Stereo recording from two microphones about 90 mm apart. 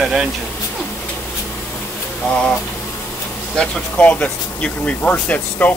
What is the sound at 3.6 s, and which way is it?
Speech, 15° left (ahead or behind).